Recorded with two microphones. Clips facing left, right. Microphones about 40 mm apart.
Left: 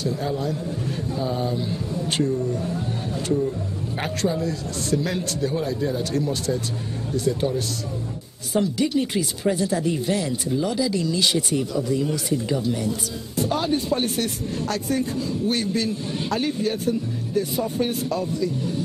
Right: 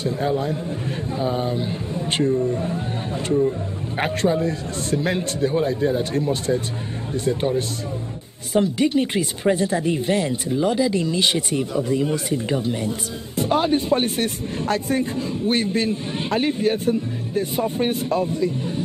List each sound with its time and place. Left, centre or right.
0.0 s speech: right
4.0 s speech: right